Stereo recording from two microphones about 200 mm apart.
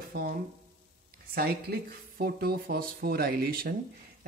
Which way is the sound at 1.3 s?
50° right (ahead or behind).